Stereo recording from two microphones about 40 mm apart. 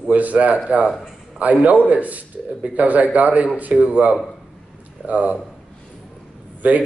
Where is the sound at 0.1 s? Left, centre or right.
Right.